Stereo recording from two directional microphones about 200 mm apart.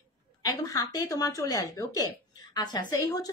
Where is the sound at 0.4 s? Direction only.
20° left (ahead or behind).